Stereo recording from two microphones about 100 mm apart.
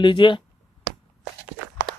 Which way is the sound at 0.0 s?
55° left (ahead or behind).